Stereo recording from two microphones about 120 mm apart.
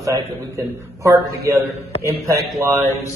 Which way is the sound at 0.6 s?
20° right (ahead or behind).